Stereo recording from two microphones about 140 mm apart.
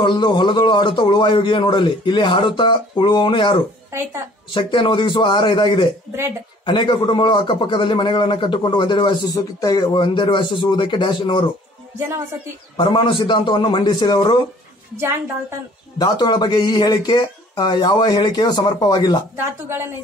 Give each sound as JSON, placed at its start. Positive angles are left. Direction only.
{"t": 0.0, "sound": "a man's voice", "side_deg": 35}
{"t": 4.6, "sound": "a man's voice", "side_deg": 35}
{"t": 12.7, "sound": "a man's voice", "side_deg": 35}
{"t": 16.0, "sound": "a man's voice", "side_deg": 30}
{"t": 19.3, "sound": "a woman's voice", "side_deg": -15}